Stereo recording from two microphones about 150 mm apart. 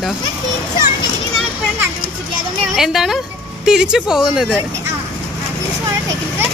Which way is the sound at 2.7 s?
Centre (ahead or behind).